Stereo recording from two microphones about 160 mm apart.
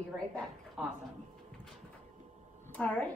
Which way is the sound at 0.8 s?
5° right (ahead or behind).